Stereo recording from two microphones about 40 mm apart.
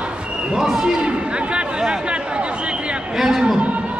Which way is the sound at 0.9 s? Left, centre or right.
Right.